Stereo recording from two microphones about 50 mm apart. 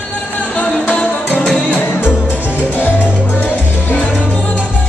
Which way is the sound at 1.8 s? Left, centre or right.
Left.